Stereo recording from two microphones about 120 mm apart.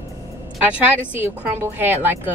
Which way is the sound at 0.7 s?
15° right (ahead or behind).